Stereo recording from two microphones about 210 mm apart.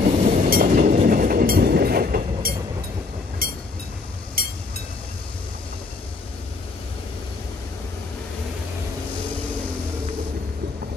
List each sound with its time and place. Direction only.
0.2 s train: 35° right (ahead or behind)
3.4 s vehicle: 45° right (ahead or behind)
4.4 s a sound: 45° right (ahead or behind)